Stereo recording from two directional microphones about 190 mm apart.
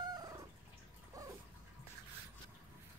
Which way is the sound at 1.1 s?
15° right (ahead or behind).